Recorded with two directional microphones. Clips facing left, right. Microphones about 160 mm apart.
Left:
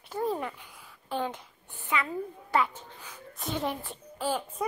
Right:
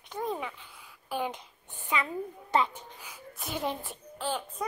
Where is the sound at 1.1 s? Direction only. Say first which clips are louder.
Left 1 dB; 15° right (ahead or behind).